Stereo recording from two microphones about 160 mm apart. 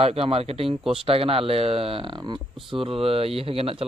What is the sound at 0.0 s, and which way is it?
A man's voice, 40° right (ahead or behind).